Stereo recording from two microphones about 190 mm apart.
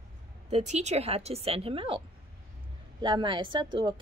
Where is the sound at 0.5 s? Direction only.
35° right (ahead or behind).